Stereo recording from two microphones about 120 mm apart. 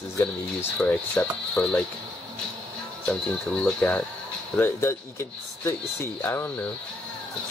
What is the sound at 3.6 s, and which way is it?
Speech, 10° left (ahead or behind).